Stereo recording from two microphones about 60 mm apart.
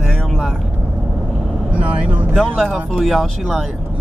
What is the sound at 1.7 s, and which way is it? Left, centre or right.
Speech, right.